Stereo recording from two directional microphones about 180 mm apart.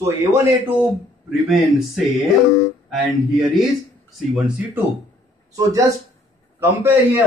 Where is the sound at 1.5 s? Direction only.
Centre (ahead or behind).